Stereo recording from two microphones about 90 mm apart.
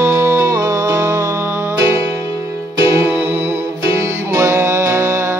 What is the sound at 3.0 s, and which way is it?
Music, 25° right (ahead or behind).